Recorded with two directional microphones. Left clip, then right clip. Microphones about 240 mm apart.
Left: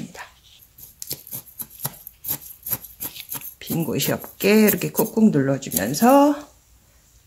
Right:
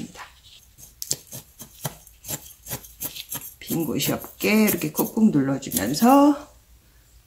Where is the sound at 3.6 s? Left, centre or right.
Left.